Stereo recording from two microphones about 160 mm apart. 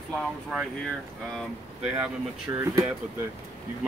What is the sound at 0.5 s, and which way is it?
Speech, 5° right (ahead or behind).